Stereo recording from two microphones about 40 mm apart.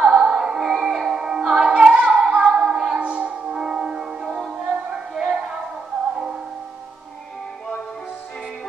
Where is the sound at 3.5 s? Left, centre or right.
Centre.